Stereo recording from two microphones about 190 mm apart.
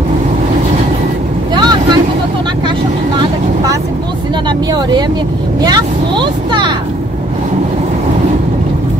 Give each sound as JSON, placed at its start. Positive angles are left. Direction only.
{"t": 1.5, "sound": "vehicle", "side_deg": -25}
{"t": 4.5, "sound": "speech", "side_deg": -20}